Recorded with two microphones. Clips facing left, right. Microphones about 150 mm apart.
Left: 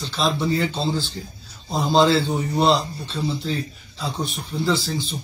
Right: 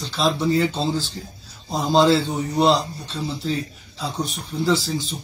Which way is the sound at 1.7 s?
Centre (ahead or behind).